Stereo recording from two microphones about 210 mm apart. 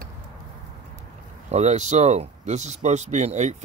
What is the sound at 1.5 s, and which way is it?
Speech, 35° right (ahead or behind).